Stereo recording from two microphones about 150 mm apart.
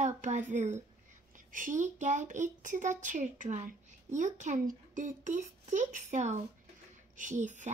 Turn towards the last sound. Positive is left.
turn(degrees=-55)  # may be behind; listen again after turning